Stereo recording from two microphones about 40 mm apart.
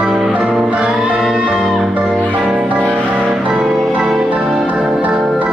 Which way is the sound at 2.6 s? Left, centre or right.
Right.